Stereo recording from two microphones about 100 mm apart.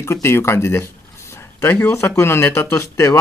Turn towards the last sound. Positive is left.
turn(degrees=30)  # may be behind; listen again after turning